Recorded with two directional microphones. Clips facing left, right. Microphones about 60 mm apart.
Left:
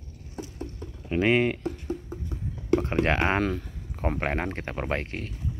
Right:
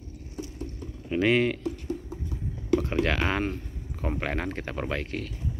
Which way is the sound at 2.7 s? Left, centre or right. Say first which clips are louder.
Left 1 dB; left.